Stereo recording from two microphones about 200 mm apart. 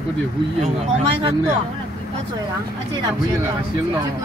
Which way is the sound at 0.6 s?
30° right (ahead or behind).